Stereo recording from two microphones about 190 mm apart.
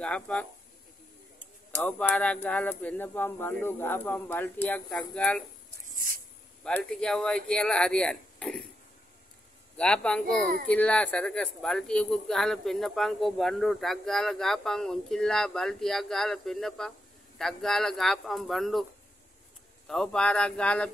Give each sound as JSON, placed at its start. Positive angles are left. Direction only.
{"t": 0.0, "sound": "speech", "side_deg": 5}
{"t": 5.9, "sound": "a sound", "side_deg": -45}
{"t": 6.6, "sound": "speech", "side_deg": 5}
{"t": 9.8, "sound": "speech", "side_deg": 5}
{"t": 19.9, "sound": "speech", "side_deg": 5}